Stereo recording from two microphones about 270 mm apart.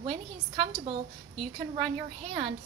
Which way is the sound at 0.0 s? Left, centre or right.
Right.